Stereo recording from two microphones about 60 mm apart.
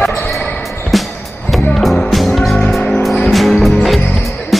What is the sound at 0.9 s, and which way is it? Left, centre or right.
Music, centre.